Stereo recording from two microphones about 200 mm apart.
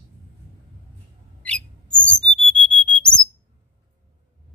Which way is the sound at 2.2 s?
25° right (ahead or behind).